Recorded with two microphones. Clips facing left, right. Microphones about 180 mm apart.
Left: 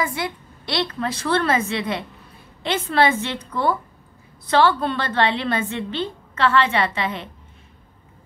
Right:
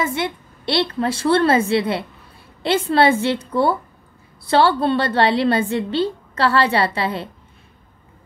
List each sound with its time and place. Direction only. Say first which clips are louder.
0.0 s a woman's voice: right 3 dB; 25° right (ahead or behind)